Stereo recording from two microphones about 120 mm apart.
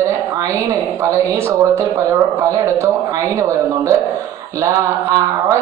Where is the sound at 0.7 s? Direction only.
25° right (ahead or behind).